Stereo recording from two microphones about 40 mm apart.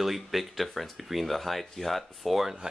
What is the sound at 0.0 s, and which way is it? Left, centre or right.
Speech, centre.